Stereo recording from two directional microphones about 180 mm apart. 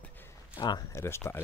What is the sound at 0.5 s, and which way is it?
Speech, 25° left (ahead or behind).